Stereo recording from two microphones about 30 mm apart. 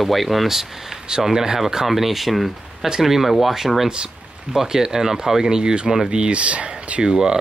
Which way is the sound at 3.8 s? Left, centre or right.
Right.